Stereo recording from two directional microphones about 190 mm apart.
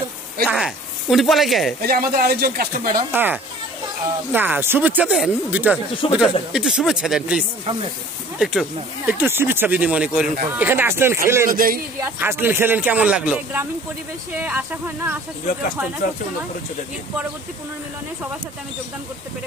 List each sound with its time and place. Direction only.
0.4 s speech: centre (ahead or behind)
1.9 s speech: 50° right (ahead or behind)
3.1 s speech: 10° right (ahead or behind)
6.0 s speech: 30° left (ahead or behind)
6.5 s speech: 5° right (ahead or behind)
11.5 s speech: 50° right (ahead or behind)
12.0 s speech: 10° right (ahead or behind)